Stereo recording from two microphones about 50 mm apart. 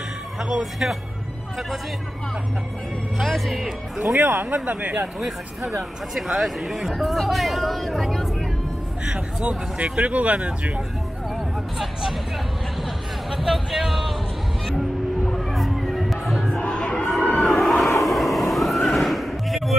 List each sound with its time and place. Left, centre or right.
0.4 s speech: centre
3.2 s speech: centre
3.6 s speech: centre
4.2 s speech: right
5.2 s speech: centre
9.0 s speech: right
11.8 s speech: centre
12.8 s hubbub: centre
15.2 s music: centre
16.7 s crowd: centre
17.4 s a sound: centre
18.0 s vehicle: centre